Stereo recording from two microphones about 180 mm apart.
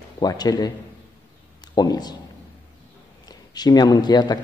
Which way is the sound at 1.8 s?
20° left (ahead or behind).